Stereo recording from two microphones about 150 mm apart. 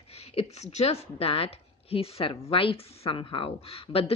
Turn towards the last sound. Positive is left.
turn(degrees=40)  # may be behind; listen again after turning